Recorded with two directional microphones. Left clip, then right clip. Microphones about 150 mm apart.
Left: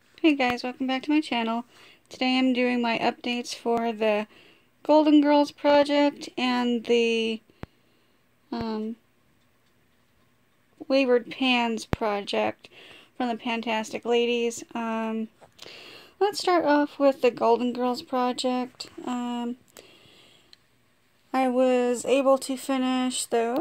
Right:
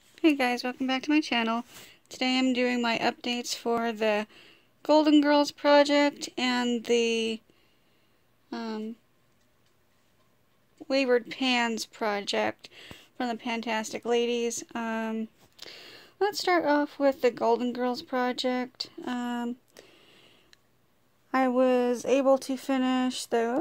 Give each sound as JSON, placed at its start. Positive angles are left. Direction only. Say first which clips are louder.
{"t": 0.1, "sound": "speech", "louder": "left 2 dB", "side_deg": 10}
{"t": 8.5, "sound": "speech", "louder": "left 4 dB", "side_deg": 25}
{"t": 10.9, "sound": "speech", "louder": "left 3 dB", "side_deg": 20}
{"t": 19.9, "sound": "a sound", "louder": "left 3 dB", "side_deg": -35}
{"t": 21.3, "sound": "speech", "louder": "left 1 dB", "side_deg": 5}